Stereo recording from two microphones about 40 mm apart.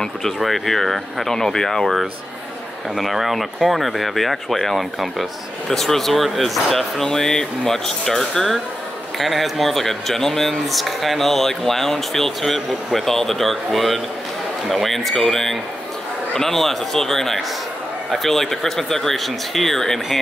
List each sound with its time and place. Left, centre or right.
0.4 s speech: centre
1.3 s speech: centre
3.0 s speech: centre